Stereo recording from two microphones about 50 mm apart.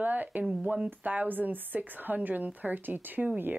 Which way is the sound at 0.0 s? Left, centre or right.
Right.